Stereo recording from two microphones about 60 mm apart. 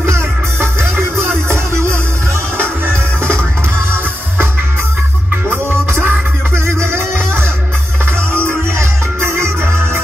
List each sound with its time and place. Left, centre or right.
0.0 s music: right
5.5 s music: right
8.5 s music: right